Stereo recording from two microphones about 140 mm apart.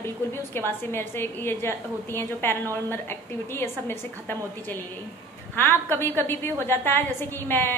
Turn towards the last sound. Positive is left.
turn(degrees=15)  # may be behind; listen again after turning